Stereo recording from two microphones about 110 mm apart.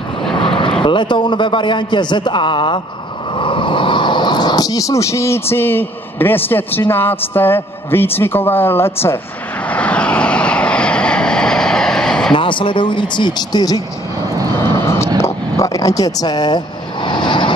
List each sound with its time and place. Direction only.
0.4 s vehicle: 55° left (ahead or behind)
0.8 s a man's voice: 45° left (ahead or behind); by 9.2 s 20° left (ahead or behind)
9.7 s vehicle: 10° left (ahead or behind)
12.4 s a man's voice: 50° left (ahead or behind)
14.6 s vehicle: 25° left (ahead or behind); by 17.5 s 45° left (ahead or behind)